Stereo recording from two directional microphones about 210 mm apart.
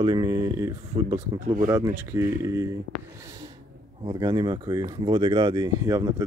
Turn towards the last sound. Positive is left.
turn(degrees=-15)  # may be behind; listen again after turning